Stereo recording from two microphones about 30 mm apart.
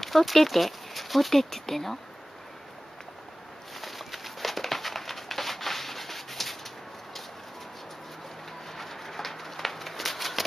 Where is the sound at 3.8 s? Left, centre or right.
Centre.